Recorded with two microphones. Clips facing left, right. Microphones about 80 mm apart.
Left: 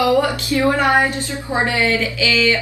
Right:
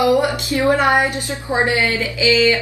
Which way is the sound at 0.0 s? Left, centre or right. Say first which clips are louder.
Even; right.